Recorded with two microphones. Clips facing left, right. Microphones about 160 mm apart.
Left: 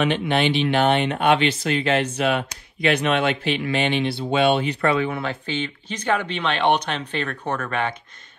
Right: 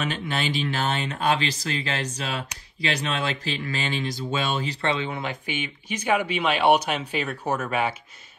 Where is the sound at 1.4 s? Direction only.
35° right (ahead or behind).